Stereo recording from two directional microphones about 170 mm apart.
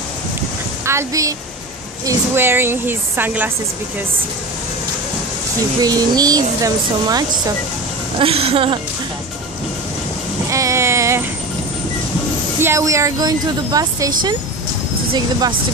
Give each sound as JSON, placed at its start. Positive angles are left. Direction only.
{"t": 0.8, "sound": "a woman's voice", "side_deg": -15}
{"t": 5.8, "sound": "speech", "side_deg": -20}
{"t": 8.2, "sound": "a woman's voice", "side_deg": -35}
{"t": 10.5, "sound": "vehicle", "side_deg": -15}
{"t": 12.5, "sound": "speech", "side_deg": -15}